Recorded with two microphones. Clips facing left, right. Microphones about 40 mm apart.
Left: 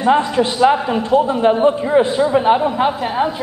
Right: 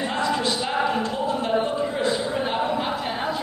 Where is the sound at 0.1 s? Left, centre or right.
Left.